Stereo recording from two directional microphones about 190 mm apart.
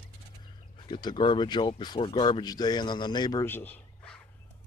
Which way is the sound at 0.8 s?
25° left (ahead or behind).